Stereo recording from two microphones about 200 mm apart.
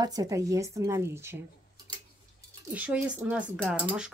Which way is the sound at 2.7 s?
5° right (ahead or behind).